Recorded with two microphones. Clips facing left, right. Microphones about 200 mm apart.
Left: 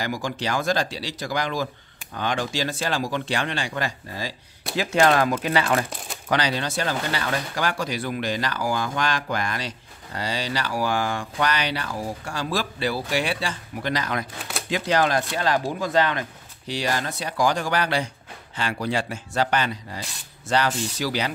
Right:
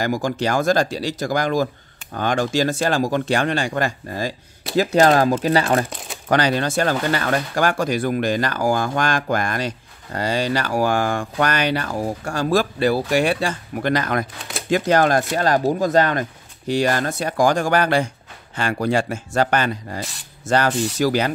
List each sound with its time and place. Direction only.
0.0 s speech: 45° right (ahead or behind)
4.7 s speech: 40° right (ahead or behind)